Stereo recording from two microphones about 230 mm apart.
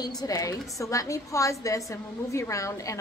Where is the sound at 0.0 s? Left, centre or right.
Centre.